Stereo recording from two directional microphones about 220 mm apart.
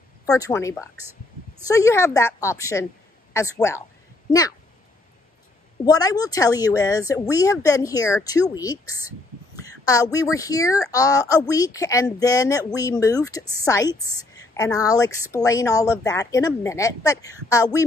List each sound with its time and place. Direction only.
0.3 s speech: 15° left (ahead or behind)
5.9 s speech: 15° left (ahead or behind)
9.7 s a sound: 15° left (ahead or behind)
10.1 s speech: 15° left (ahead or behind)